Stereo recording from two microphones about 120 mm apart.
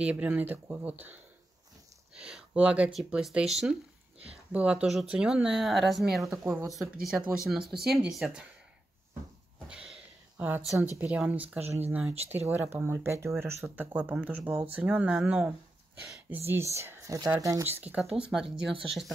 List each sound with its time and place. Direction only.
0.0 s speech: 10° right (ahead or behind)
2.1 s speech: 5° right (ahead or behind)
6.2 s speech: 20° right (ahead or behind)
6.8 s speech: 5° right (ahead or behind)
9.7 s a sound: 5° right (ahead or behind)
10.8 s speech: 10° right (ahead or behind)
11.6 s speech: 60° right (ahead or behind)
11.9 s speech: 10° right (ahead or behind)
16.4 s speech: 20° right (ahead or behind); by 19.0 s 5° right (ahead or behind)